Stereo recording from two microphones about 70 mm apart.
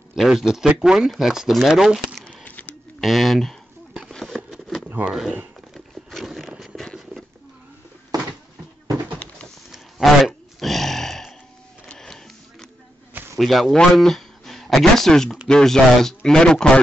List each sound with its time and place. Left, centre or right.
0.1 s speech: centre
2.1 s a sound: centre
3.0 s speech: centre
4.1 s a sound: centre
5.0 s speech: centre
6.0 s a sound: centre
9.7 s burping: centre
11.9 s music: centre
13.4 s speech: centre